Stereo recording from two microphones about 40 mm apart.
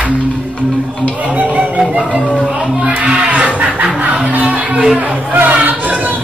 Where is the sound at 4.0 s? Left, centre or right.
Right.